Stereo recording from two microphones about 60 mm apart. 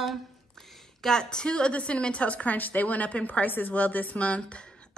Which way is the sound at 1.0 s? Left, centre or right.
Centre.